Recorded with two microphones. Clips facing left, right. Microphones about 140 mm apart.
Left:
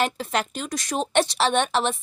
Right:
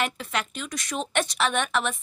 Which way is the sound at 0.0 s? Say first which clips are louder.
Left 4 dB; 35° left (ahead or behind).